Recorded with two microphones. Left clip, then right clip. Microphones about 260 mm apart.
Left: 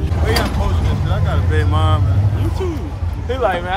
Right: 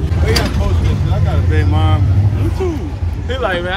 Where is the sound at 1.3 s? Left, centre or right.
Centre.